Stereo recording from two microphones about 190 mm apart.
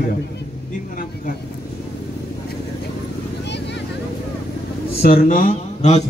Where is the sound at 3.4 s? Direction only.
65° left (ahead or behind).